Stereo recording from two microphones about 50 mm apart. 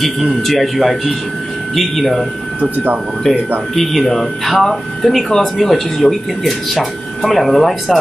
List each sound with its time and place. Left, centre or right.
0.0 s speech: centre
2.6 s speech: right
3.3 s speech: centre